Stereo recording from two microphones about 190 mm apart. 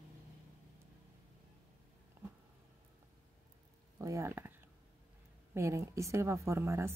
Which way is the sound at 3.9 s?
15° right (ahead or behind).